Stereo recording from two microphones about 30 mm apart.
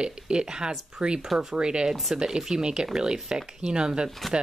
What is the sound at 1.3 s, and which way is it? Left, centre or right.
Speech, centre.